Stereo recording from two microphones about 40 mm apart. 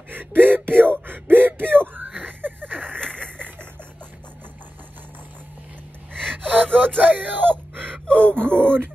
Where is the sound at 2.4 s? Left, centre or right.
Right.